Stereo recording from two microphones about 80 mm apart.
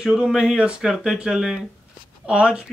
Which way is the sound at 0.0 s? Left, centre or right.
Centre.